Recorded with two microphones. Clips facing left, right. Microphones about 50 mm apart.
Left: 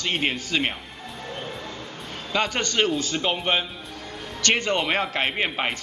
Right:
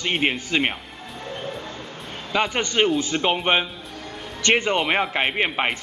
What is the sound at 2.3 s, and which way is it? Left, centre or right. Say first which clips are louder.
Speech: right 2 dB; centre.